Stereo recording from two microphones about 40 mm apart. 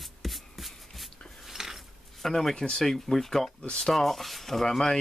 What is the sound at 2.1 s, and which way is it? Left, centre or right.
Speech, centre.